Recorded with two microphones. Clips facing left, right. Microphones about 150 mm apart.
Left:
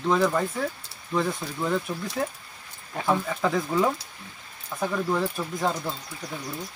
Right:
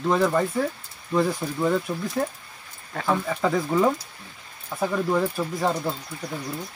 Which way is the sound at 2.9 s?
15° left (ahead or behind).